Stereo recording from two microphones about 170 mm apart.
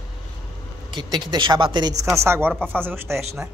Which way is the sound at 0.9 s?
25° right (ahead or behind).